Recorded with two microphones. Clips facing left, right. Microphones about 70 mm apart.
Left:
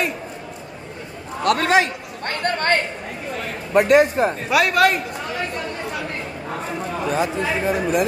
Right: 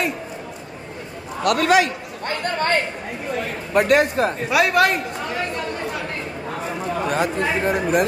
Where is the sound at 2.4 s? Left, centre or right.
Left.